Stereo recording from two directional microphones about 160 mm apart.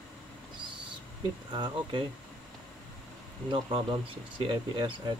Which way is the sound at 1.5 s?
30° right (ahead or behind).